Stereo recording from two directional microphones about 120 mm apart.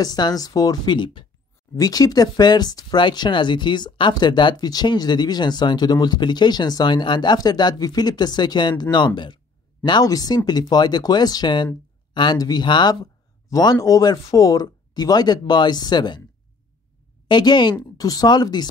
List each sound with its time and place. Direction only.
0.0 s speech: 35° left (ahead or behind)
17.3 s speech: 40° left (ahead or behind)